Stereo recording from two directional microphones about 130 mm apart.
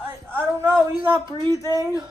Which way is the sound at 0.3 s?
15° right (ahead or behind).